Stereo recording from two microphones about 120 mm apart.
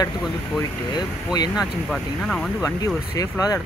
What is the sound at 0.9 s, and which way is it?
Speech, 35° left (ahead or behind).